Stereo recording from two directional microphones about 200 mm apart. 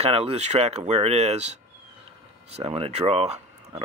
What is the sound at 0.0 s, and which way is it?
Speech, 30° right (ahead or behind).